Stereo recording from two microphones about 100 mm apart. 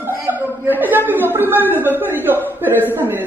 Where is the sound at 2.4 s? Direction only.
20° right (ahead or behind).